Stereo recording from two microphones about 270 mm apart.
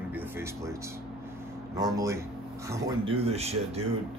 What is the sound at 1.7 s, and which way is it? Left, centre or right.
Speech, centre.